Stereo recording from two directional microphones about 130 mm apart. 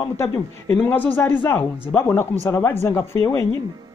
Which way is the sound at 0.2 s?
20° left (ahead or behind).